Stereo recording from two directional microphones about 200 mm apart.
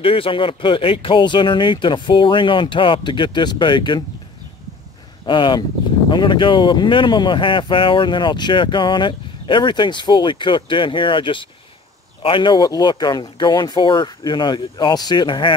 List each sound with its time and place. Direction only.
0.0 s speech: 25° left (ahead or behind)
5.2 s speech: 25° left (ahead or behind)